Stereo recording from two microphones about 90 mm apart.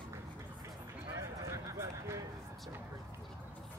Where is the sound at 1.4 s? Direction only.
35° right (ahead or behind).